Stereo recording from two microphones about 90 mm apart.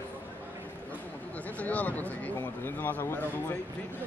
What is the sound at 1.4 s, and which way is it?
Speech, 15° left (ahead or behind).